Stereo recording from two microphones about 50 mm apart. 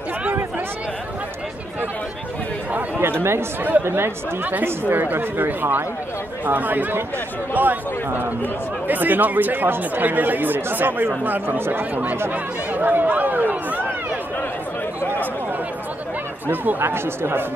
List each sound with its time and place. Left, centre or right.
3.0 s speech: right
4.8 s speech: right
16.4 s speech: right